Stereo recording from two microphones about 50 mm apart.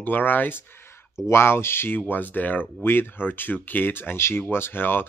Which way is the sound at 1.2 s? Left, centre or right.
Left.